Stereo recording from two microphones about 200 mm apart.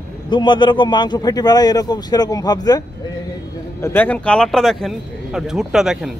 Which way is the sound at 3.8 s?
10° left (ahead or behind).